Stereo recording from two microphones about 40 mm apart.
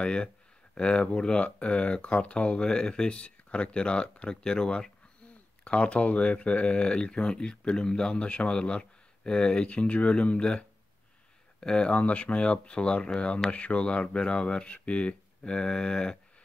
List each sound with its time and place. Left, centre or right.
0.0 s speech: left
11.6 s speech: left
11.9 s speech: left